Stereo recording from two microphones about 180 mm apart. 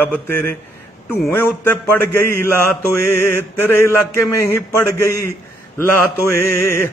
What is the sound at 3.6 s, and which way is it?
A man's voice, 15° left (ahead or behind).